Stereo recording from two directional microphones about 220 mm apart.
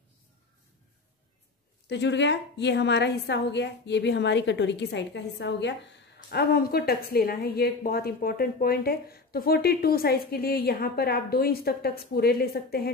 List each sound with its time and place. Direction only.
1.9 s a woman's voice: 50° left (ahead or behind)